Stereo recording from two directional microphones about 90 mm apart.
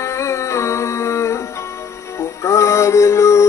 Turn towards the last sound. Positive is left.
turn(degrees=35)  # may be behind; listen again after turning